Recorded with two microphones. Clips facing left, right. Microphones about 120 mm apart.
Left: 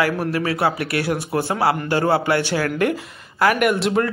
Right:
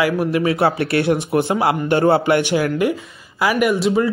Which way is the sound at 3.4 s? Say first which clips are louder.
Even; 5° right (ahead or behind).